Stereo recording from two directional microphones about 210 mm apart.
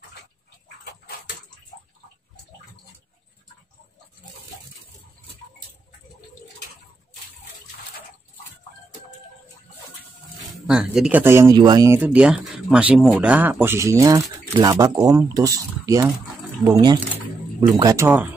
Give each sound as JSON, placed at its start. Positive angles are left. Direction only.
{"t": 10.7, "sound": "speech", "side_deg": -5}